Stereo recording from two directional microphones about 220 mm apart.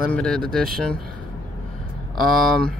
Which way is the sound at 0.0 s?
5° left (ahead or behind).